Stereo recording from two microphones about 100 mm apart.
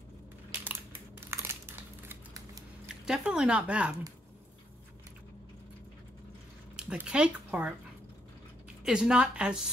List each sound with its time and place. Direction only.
0.7 s crumpling: 25° right (ahead or behind)
3.1 s a woman's voice: 10° right (ahead or behind)
6.8 s speech: 10° right (ahead or behind)
8.8 s a woman's voice: 5° right (ahead or behind)